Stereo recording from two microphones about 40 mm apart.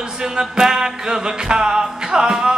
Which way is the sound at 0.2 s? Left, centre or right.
Centre.